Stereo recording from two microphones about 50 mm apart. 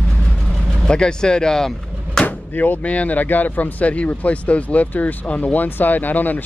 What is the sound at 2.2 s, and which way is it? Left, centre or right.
Speech, left.